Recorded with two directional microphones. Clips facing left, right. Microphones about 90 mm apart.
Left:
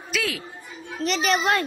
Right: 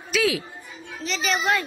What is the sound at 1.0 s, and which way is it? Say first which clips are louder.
Speech: left 3 dB; 60° left (ahead or behind).